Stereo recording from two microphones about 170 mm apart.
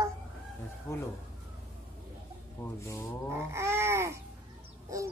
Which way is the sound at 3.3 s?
15° right (ahead or behind).